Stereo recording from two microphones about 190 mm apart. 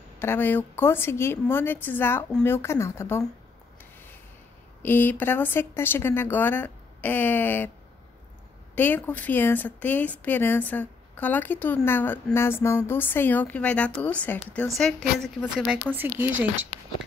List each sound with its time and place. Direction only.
0.2 s speech: 10° left (ahead or behind)
4.8 s speech: 10° left (ahead or behind)
8.7 s speech: 10° left (ahead or behind); by 16.3 s 10° right (ahead or behind)
16.3 s speech: 90° right